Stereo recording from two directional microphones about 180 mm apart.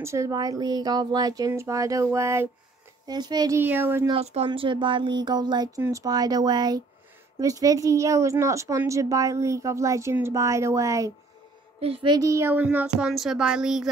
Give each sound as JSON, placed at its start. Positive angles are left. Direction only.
{"t": 0.0, "sound": "speech", "side_deg": -15}
{"t": 4.1, "sound": "speech", "side_deg": -35}
{"t": 11.8, "sound": "speech", "side_deg": -30}